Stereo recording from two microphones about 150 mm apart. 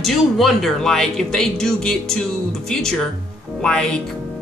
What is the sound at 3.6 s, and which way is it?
Speech, 5° left (ahead or behind).